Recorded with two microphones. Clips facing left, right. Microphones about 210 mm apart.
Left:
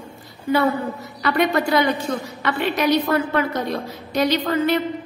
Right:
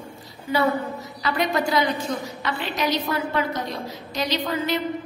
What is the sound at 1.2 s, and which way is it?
A woman's voice, 60° left (ahead or behind).